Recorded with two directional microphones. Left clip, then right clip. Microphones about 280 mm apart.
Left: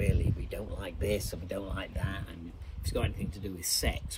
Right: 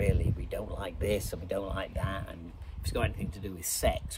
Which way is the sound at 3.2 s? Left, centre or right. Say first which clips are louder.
Even; centre.